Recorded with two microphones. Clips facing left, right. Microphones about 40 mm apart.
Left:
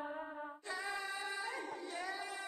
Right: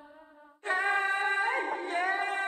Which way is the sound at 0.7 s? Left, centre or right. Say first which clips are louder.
Right 15 dB; right.